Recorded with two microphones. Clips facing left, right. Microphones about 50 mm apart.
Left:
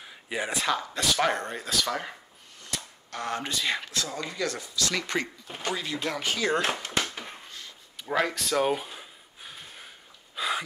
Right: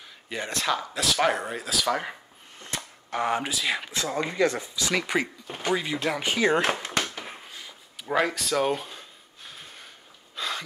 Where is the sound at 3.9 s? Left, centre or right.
Right.